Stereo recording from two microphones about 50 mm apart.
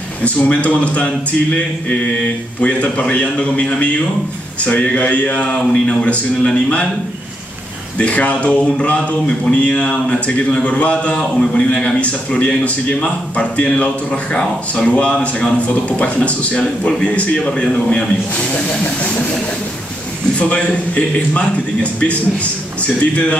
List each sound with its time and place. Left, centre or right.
0.2 s a man's voice: left
2.6 s a man's voice: left
8.0 s a man's voice: left
20.3 s a man's voice: left